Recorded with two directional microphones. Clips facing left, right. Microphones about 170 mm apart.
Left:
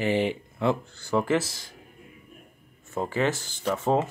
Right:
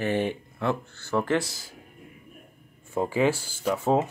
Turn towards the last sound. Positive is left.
turn(degrees=0)  # may be behind; listen again after turning